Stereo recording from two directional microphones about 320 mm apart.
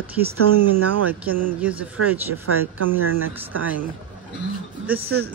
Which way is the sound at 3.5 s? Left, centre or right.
Right.